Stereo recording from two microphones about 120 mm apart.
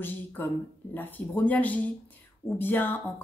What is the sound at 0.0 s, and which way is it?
Speech, 15° left (ahead or behind).